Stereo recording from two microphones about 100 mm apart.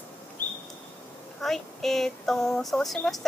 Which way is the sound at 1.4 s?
5° left (ahead or behind).